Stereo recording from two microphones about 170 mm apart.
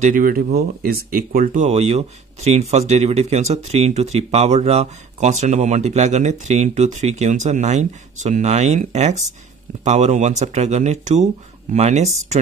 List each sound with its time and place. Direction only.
0.0 s speech: 55° right (ahead or behind)